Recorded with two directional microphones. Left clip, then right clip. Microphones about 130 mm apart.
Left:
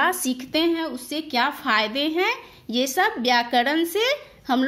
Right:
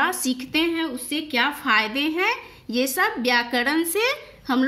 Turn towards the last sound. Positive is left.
turn(degrees=35)  # may be behind; listen again after turning